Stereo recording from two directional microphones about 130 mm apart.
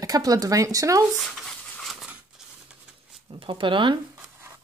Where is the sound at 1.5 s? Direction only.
5° left (ahead or behind).